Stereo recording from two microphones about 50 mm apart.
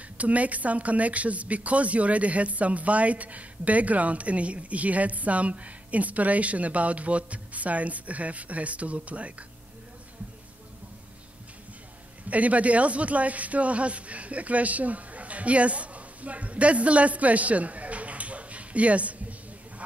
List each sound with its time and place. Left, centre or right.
0.2 s a woman's voice: right
12.3 s speech: right